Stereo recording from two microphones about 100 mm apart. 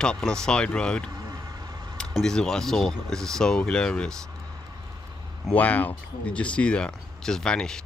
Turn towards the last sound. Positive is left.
turn(degrees=5)  # may be behind; listen again after turning